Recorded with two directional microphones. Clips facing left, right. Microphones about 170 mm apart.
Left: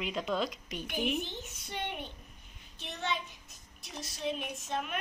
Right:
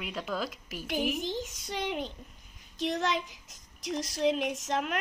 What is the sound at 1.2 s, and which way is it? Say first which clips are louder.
Speech: right 9 dB; 90° right.